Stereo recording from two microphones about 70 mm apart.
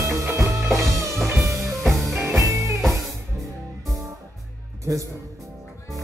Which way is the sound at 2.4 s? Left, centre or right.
Right.